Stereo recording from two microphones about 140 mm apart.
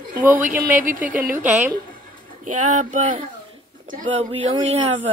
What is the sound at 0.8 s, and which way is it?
Speech, 75° right (ahead or behind).